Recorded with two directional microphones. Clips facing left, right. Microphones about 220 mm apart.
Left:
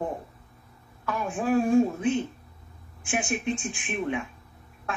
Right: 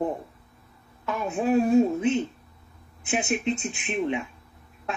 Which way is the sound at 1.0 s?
25° right (ahead or behind).